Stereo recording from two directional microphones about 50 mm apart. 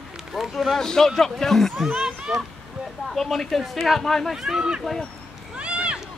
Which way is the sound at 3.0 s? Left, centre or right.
Centre.